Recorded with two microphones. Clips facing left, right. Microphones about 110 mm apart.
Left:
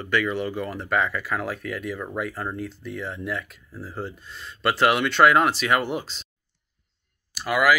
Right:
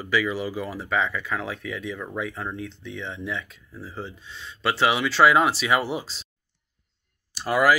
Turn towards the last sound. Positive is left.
turn(degrees=-35)  # may be behind; listen again after turning